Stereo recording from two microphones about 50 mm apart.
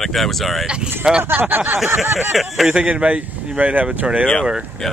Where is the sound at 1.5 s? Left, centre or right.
Right.